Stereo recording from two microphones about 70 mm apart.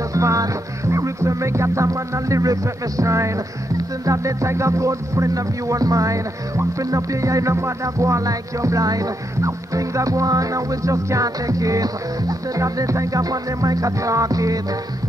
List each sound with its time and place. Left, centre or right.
0.1 s music: right